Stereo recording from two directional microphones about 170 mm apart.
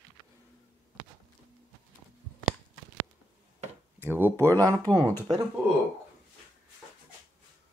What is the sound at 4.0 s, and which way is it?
Speech, 10° right (ahead or behind).